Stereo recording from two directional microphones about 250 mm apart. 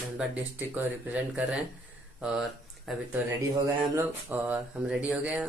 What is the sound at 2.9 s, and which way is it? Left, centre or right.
Speech, centre.